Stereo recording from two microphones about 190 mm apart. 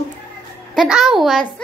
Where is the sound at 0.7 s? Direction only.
5° right (ahead or behind).